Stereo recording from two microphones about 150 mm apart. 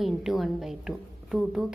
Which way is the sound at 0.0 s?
Centre (ahead or behind).